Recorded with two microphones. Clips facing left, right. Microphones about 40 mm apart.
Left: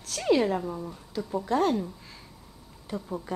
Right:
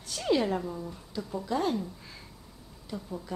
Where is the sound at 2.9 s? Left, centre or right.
Left.